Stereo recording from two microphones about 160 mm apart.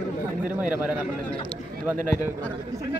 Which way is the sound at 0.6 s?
10° right (ahead or behind).